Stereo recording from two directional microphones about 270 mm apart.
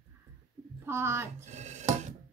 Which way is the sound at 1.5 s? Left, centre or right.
Right.